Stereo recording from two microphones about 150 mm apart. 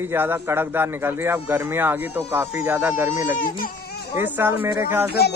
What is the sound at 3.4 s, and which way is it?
Baby cry, 80° left.